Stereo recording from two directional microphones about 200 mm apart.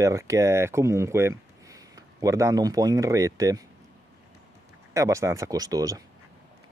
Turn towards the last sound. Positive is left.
turn(degrees=-15)  # may be behind; listen again after turning